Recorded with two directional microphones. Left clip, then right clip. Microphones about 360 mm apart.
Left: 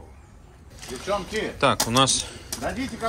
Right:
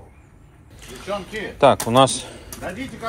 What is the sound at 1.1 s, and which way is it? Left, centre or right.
Speech, left.